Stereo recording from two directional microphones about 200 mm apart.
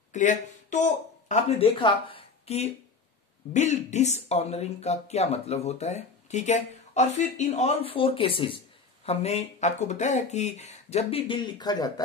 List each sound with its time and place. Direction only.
0.1 s speech: 40° left (ahead or behind)
1.8 s speech: 25° left (ahead or behind)